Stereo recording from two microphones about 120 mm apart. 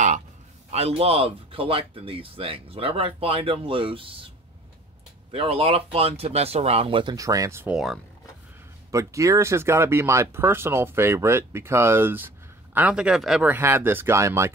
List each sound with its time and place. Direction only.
0.7 s speech: 60° right (ahead or behind)
5.3 s speech: 50° right (ahead or behind)
7.2 s speech: 25° right (ahead or behind)
7.6 s speech: 5° right (ahead or behind)
8.9 s speech: 25° right (ahead or behind); by 13.5 s 5° right (ahead or behind)
13.5 s speech: 20° right (ahead or behind)